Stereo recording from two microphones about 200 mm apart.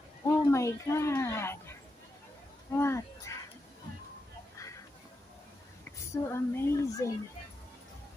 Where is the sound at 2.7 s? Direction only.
15° left (ahead or behind).